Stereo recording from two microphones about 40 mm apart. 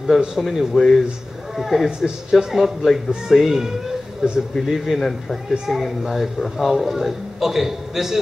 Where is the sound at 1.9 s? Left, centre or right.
Centre.